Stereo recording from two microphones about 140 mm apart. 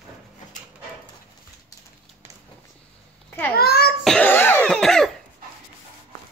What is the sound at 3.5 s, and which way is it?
Babbling, 90° left.